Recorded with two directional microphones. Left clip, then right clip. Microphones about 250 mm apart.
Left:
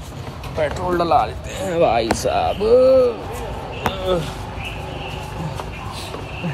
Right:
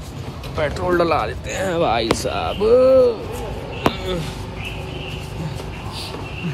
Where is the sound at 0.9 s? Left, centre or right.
Centre.